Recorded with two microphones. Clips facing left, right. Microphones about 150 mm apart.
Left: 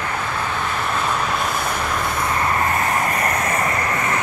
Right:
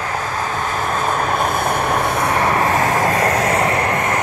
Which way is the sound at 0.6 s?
45° right (ahead or behind).